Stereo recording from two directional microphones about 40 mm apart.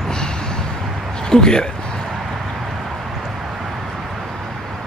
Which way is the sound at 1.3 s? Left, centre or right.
Centre.